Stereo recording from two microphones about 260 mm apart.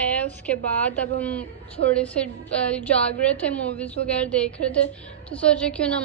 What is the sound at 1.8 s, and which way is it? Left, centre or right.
Speech, right.